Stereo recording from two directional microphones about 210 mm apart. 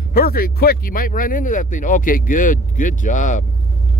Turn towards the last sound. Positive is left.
turn(degrees=35)  # may be behind; listen again after turning